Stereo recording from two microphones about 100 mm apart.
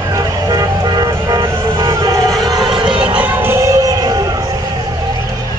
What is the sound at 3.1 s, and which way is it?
Music, 20° right (ahead or behind).